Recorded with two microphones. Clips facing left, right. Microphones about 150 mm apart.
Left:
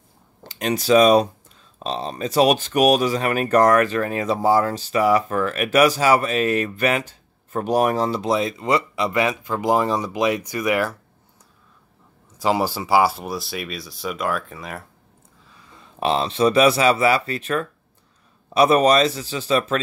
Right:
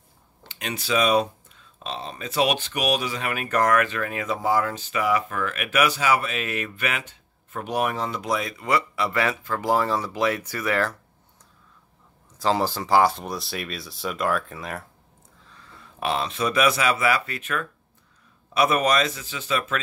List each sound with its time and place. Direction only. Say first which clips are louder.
0.4 s speech: left 9 dB; 40° left (ahead or behind); by 11.0 s 15° left (ahead or behind)
12.4 s speech: left 2 dB; 10° left (ahead or behind)
15.5 s speech: left 1 dB; 20° left (ahead or behind)